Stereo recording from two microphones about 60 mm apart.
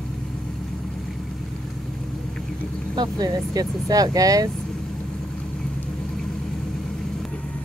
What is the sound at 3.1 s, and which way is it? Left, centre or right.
Speech, right.